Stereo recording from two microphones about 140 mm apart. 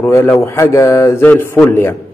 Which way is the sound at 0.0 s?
15° left (ahead or behind).